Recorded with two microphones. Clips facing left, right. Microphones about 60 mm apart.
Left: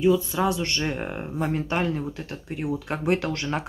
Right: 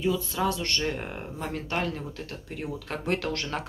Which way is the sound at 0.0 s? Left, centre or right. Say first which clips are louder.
Left 6 dB; centre.